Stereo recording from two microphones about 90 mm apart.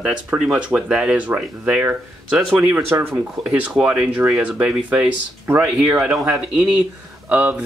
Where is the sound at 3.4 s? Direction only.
10° right (ahead or behind).